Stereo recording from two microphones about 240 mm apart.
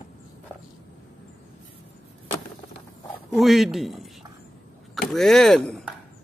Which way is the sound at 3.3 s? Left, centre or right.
Centre.